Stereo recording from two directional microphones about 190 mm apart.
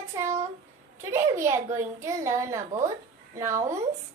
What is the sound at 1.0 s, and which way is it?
A woman's voice, 15° right (ahead or behind).